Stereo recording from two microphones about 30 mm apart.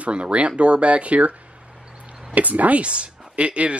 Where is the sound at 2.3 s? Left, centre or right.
Right.